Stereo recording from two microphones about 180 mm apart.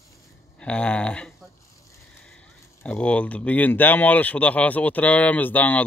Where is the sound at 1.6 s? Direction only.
15° left (ahead or behind).